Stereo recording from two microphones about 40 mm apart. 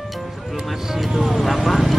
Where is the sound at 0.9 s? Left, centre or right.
Centre.